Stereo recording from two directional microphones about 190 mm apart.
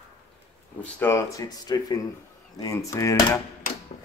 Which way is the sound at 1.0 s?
15° left (ahead or behind).